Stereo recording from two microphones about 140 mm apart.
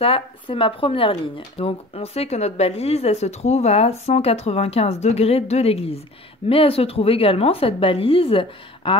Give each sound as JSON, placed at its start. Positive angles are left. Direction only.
{"t": 0.0, "sound": "a woman's voice", "side_deg": 40}